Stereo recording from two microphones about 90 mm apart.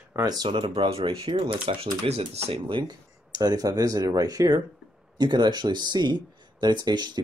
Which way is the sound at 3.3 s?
45° right (ahead or behind).